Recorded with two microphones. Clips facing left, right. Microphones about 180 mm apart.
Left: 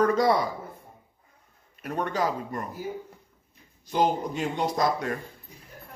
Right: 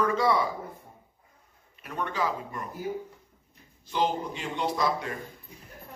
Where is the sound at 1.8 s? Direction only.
40° left (ahead or behind).